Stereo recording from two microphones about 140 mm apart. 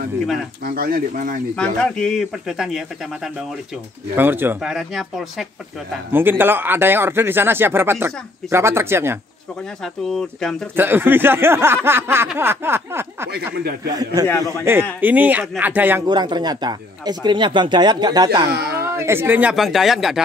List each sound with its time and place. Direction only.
0.7 s speech: 90° right; by 1.4 s 70° right (ahead or behind)
1.6 s speech: 5° left (ahead or behind)
4.2 s speech: 15° right (ahead or behind)
4.6 s speech: centre (ahead or behind)
6.1 s speech: 15° right (ahead or behind)
10.0 s speech: 5° left (ahead or behind)
10.8 s a man's voice: 15° right (ahead or behind)
16.1 s speech: 30° right (ahead or behind)
18.9 s speech: 15° right (ahead or behind)
19.5 s speech: centre (ahead or behind)